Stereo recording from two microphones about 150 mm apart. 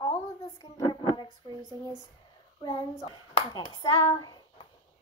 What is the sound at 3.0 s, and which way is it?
Speech, 30° left (ahead or behind).